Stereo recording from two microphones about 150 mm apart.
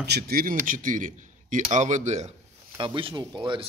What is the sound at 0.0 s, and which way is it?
Speech, 90° right.